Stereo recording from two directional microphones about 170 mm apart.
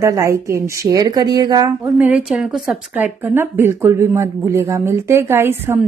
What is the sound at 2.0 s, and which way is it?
A woman's voice, 5° right (ahead or behind).